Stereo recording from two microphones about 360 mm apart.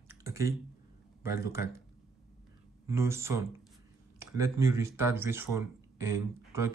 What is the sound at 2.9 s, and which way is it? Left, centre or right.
Speech, centre.